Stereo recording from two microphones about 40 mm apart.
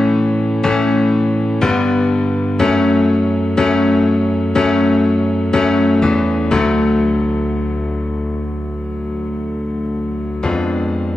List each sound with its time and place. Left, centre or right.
0.0 s music: centre